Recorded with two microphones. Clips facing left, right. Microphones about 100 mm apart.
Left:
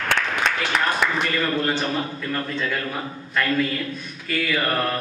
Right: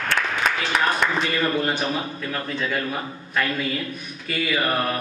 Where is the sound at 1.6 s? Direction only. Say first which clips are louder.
Left 1 dB; 15° right (ahead or behind).